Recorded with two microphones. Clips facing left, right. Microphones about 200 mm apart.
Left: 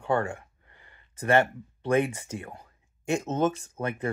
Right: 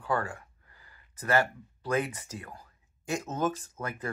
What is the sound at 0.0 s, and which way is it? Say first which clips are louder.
Speech: left 4 dB; 25° left (ahead or behind).